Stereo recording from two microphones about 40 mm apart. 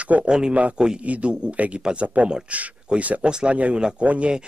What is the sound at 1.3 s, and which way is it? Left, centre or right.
Speech, right.